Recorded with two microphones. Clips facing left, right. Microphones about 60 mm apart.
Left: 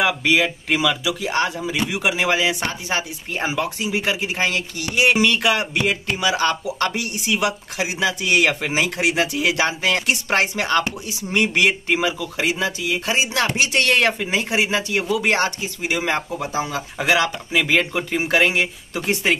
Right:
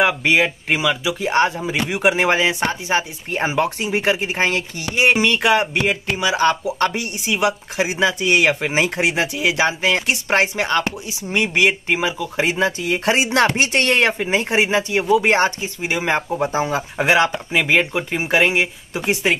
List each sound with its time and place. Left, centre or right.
0.0 s speech: right
3.6 s speech: right
8.5 s speech: centre
8.7 s speech: right
9.1 s speech: centre
12.4 s speech: right
13.6 s speech: right
14.4 s speech: right; by 19.3 s centre